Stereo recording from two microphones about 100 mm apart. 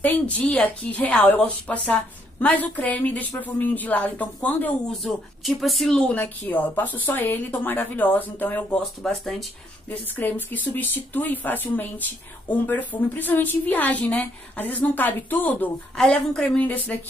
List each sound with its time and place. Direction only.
0.0 s speech: 15° left (ahead or behind)
5.0 s speech: centre (ahead or behind); by 8.8 s 15° left (ahead or behind)
9.0 s speech: centre (ahead or behind)
9.8 s speech: 20° left (ahead or behind)